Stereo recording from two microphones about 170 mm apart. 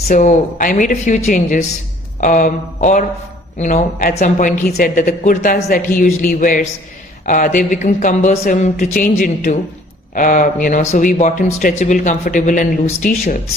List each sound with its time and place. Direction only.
0.1 s a man's voice: 50° left (ahead or behind)
8.9 s a man's voice: 55° left (ahead or behind)